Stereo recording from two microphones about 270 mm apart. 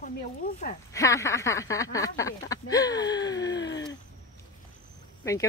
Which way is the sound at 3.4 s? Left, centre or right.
Left.